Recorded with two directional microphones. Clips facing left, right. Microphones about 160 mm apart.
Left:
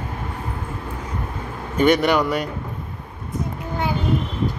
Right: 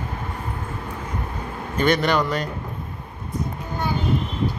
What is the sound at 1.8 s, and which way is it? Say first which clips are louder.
Speech: left 3 dB; 10° left (ahead or behind).